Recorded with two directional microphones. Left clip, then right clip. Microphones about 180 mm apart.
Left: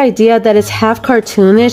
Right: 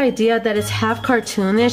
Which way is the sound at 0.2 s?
40° left (ahead or behind).